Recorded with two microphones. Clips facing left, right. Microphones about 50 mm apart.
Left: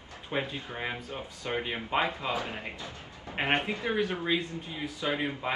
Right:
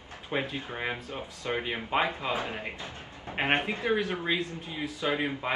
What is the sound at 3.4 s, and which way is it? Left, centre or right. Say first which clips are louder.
Speech: right 1 dB; right.